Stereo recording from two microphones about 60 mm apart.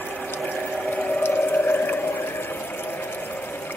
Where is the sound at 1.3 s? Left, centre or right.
Left.